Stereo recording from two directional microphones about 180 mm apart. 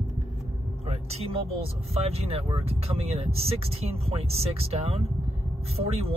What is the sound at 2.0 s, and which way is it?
Speech, 35° right (ahead or behind).